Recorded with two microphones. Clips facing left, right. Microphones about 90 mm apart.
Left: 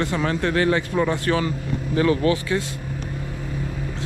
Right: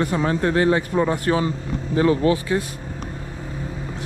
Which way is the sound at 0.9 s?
90° right.